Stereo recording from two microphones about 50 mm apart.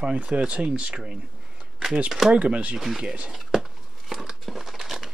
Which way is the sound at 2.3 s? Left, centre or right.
Right.